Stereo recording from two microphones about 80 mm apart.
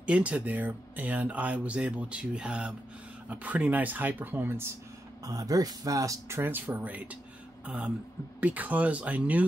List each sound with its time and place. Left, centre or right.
0.0 s speech: centre
5.2 s speech: right; by 9.4 s centre